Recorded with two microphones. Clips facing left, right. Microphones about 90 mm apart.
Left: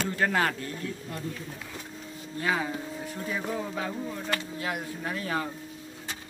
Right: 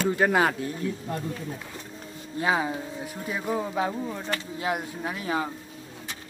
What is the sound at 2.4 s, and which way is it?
Speech, 20° right (ahead or behind).